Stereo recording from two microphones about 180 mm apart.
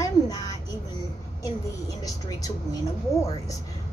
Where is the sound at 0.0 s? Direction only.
20° left (ahead or behind).